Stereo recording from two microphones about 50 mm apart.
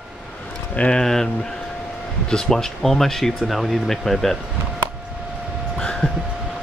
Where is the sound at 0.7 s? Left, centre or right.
Left.